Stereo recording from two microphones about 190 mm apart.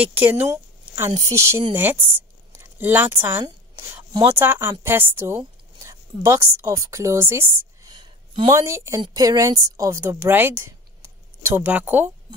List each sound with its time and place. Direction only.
0.0 s a woman's voice: 10° right (ahead or behind)